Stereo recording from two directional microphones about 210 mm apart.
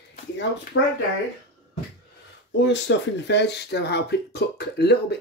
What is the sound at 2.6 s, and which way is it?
Speech, 55° left (ahead or behind).